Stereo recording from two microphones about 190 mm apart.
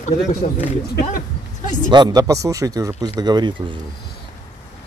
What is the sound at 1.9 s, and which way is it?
Speech, 20° right (ahead or behind).